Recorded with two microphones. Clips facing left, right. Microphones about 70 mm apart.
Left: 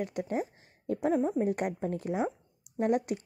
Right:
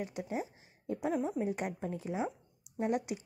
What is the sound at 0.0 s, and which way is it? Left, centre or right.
Speech, left.